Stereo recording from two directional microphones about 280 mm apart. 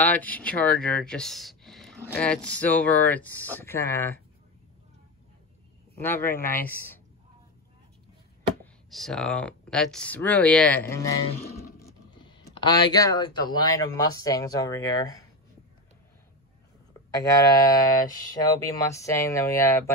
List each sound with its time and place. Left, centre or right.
0.0 s speech: centre
5.9 s speech: centre
8.9 s speech: centre
17.1 s speech: centre